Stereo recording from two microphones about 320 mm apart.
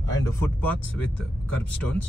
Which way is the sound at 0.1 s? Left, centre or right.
Centre.